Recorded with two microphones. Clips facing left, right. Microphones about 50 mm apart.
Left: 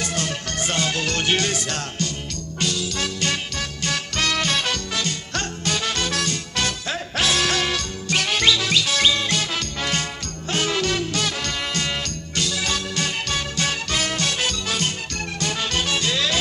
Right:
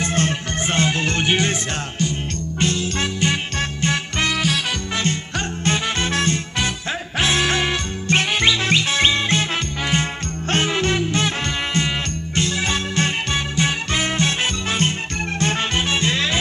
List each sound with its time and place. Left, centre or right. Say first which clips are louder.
0.0 s music: right 5 dB; right
4.3 s music: even; centre
5.7 s music: right 3 dB; right
9.8 s music: right 4 dB; centre